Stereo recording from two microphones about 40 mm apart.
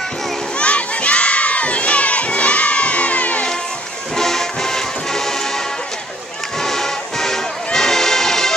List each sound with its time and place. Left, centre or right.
0.6 s crowd: left
4.2 s music: centre
6.6 s music: centre